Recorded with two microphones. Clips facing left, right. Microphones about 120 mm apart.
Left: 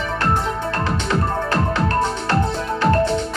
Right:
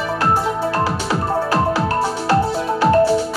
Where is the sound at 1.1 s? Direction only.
10° right (ahead or behind).